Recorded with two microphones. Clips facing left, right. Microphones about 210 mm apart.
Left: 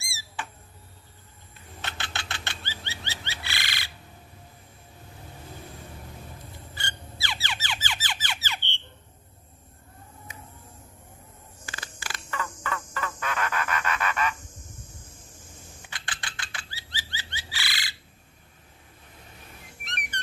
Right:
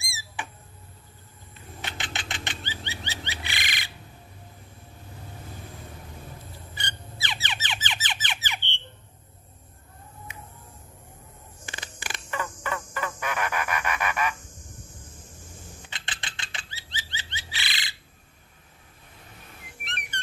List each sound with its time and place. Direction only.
0.0 s a sound: 15° right (ahead or behind)
1.8 s bird flight: 15° right (ahead or behind)
6.7 s squeak: 20° right (ahead or behind)
11.6 s frog: 20° right (ahead or behind)
15.9 s bird flight: 20° right (ahead or behind)